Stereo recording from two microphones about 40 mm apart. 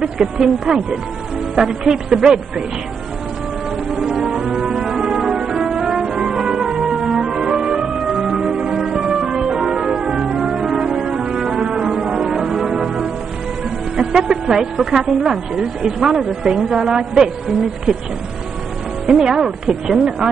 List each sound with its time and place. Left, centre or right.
0.0 s a woman's voice: centre
4.0 s music: centre
13.9 s a woman's voice: centre
19.0 s a woman's voice: centre